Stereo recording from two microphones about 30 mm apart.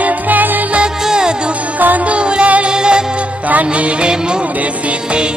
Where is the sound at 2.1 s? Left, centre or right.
Right.